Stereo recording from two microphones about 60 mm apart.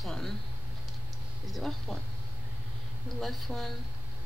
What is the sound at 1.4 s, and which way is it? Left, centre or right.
Speech, centre.